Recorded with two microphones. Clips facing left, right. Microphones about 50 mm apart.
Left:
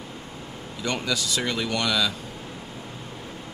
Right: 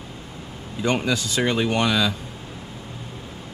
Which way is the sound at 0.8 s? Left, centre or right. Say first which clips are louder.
Right 5 dB; right.